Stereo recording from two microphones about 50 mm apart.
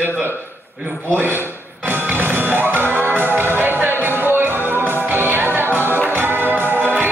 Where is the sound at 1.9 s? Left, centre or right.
Right.